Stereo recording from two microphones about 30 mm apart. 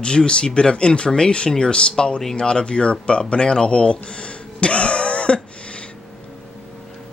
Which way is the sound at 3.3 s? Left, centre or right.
Left.